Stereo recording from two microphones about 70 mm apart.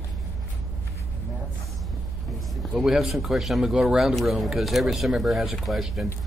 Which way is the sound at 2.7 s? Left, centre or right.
Centre.